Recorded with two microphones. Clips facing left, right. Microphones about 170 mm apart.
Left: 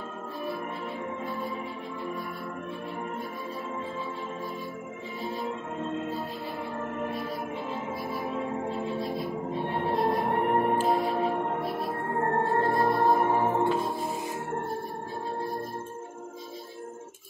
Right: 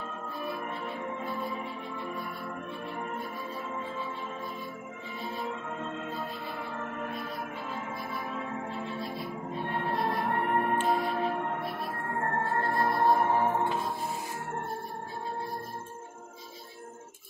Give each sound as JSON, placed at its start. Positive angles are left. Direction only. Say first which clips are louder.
{"t": 8.1, "sound": "music", "louder": "left 7 dB", "side_deg": 25}
{"t": 9.7, "sound": "music", "louder": "left 4 dB", "side_deg": 15}
{"t": 11.9, "sound": "music", "louder": "left 5 dB", "side_deg": 25}